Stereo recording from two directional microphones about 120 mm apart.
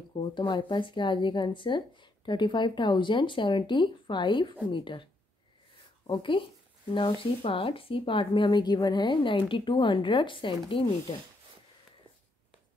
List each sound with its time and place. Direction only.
0.1 s speech: 40° left (ahead or behind)
6.0 s speech: 40° left (ahead or behind)